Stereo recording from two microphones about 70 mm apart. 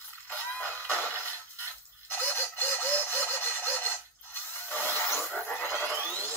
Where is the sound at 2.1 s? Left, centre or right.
Left.